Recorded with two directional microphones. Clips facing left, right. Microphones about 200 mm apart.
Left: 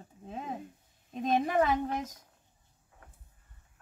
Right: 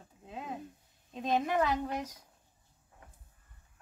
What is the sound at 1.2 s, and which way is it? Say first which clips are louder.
Female singing: left 2 dB; 50° left (ahead or behind).